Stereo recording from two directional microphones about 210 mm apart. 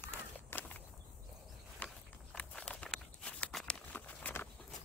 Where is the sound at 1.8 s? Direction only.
5° left (ahead or behind).